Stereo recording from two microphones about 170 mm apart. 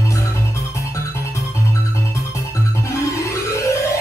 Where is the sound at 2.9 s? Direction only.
15° left (ahead or behind).